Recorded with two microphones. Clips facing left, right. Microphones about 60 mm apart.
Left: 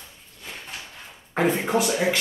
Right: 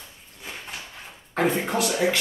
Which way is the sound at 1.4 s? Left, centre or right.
Centre.